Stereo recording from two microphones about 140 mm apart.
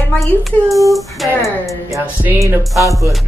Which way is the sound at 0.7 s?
25° right (ahead or behind).